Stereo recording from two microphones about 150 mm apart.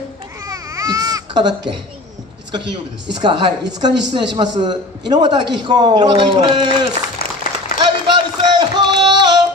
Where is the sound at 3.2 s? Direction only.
35° right (ahead or behind).